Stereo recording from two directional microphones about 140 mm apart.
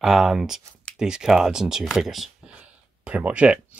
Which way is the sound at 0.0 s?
Centre (ahead or behind).